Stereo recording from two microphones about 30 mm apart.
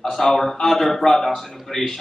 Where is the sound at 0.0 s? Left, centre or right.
Centre.